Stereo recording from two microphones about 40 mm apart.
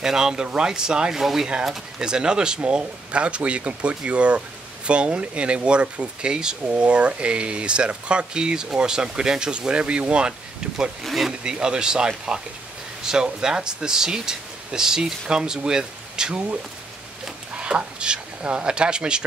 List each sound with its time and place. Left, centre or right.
0.0 s speech: centre
11.4 s speech: right
17.6 s speech: right